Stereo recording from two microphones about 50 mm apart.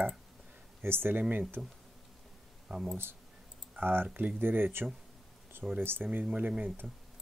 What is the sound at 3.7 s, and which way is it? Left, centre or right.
Speech, right.